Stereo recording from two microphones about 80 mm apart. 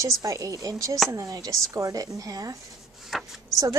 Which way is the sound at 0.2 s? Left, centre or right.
Right.